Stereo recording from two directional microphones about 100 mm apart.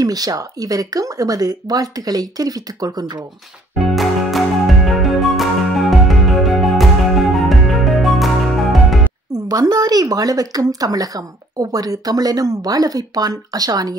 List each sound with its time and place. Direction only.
0.0 s speech: 40° right (ahead or behind)
3.7 s music: centre (ahead or behind)
9.5 s speech: 40° right (ahead or behind)